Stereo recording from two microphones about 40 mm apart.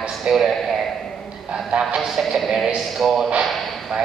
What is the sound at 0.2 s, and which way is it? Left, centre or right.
Speech, centre.